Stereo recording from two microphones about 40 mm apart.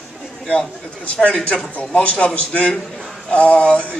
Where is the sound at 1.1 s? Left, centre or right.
Left.